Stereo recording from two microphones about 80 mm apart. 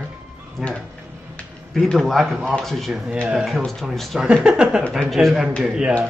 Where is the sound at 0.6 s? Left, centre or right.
Centre.